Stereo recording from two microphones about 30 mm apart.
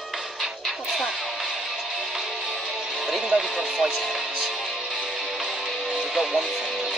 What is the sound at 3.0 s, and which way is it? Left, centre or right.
Speech, centre.